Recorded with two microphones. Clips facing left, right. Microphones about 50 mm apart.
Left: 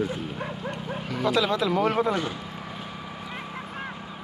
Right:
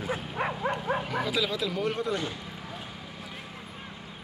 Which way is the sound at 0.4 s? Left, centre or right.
Right.